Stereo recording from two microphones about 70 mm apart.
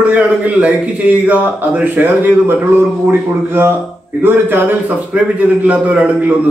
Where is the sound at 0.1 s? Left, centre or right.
Centre.